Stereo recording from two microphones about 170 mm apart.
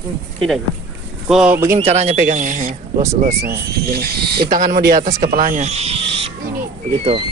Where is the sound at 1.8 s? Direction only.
40° right (ahead or behind); by 4.0 s 65° right (ahead or behind).